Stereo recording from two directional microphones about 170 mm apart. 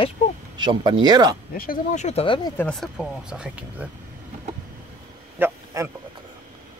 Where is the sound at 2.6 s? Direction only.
5° left (ahead or behind).